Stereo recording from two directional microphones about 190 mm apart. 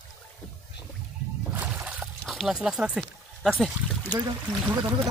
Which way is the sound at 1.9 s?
Centre (ahead or behind).